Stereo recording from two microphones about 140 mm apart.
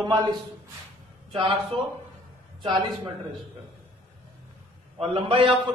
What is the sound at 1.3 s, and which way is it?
Speech, 40° right (ahead or behind).